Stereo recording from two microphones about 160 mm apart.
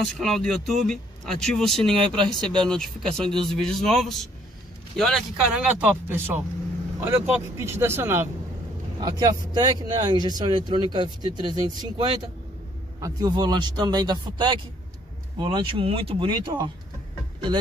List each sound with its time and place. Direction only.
0.0 s speech: centre (ahead or behind)
2.0 s speech: 30° right (ahead or behind)
2.6 s speech: 5° left (ahead or behind); by 8.3 s 15° right (ahead or behind)
9.0 s speech: 25° right (ahead or behind)